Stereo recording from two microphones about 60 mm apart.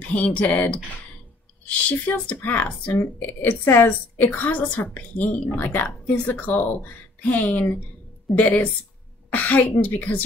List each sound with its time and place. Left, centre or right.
0.1 s a woman's voice: left
9.3 s speech: left